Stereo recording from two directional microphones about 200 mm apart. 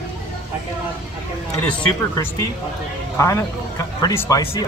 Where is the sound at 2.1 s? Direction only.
15° left (ahead or behind).